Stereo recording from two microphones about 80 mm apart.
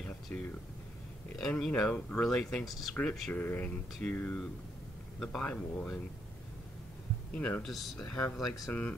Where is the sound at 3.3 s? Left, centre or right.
Left.